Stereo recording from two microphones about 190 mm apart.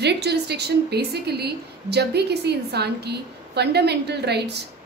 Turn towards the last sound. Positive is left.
turn(degrees=-60)  # may be behind; listen again after turning